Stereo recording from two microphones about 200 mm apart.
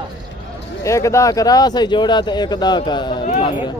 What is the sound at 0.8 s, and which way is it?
Speech, 15° left (ahead or behind).